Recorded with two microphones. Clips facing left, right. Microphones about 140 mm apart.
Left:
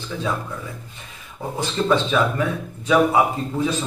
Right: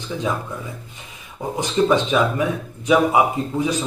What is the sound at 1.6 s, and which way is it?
Speech, 15° right (ahead or behind).